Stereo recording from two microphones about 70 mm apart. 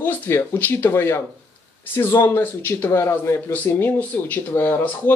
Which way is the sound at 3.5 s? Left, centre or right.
Left.